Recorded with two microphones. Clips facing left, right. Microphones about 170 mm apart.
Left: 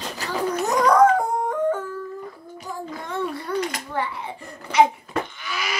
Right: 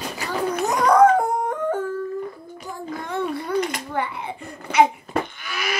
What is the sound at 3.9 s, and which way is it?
Speech, 55° right (ahead or behind).